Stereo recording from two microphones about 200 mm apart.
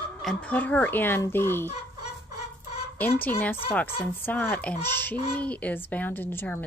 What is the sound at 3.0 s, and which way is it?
A child's voice, 10° left (ahead or behind).